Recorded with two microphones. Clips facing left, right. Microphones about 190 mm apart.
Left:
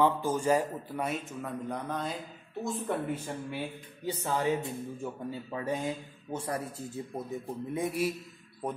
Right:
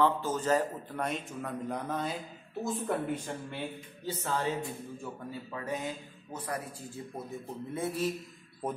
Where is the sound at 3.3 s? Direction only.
10° left (ahead or behind).